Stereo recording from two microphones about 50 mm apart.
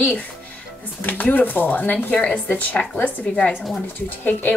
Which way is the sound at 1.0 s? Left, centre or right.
Left.